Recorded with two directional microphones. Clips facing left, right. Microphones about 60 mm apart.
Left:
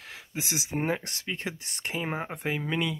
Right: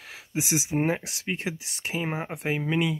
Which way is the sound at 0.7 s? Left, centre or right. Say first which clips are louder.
Right 1 dB; centre.